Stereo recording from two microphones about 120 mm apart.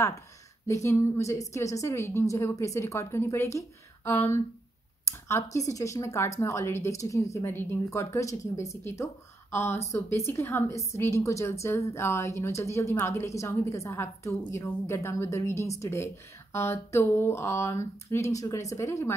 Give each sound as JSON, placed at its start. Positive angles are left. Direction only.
{"t": 0.7, "sound": "speech", "side_deg": 25}